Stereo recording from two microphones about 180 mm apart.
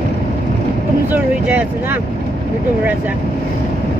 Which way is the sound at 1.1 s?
10° right (ahead or behind).